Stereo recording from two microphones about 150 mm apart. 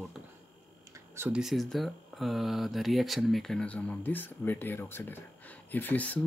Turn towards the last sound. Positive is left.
turn(degrees=10)  # may be behind; listen again after turning